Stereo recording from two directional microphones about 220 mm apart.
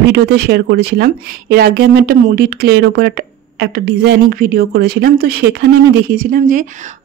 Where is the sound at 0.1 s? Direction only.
50° right (ahead or behind).